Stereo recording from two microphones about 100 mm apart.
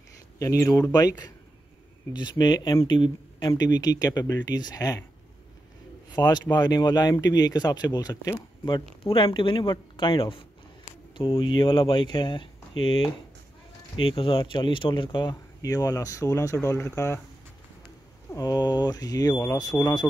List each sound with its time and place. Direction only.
0.4 s speech: 30° left (ahead or behind)
6.1 s speech: 45° left (ahead or behind)
9.0 s speech: 55° left (ahead or behind)
15.6 s speech: 35° left (ahead or behind)
18.3 s speech: 40° left (ahead or behind)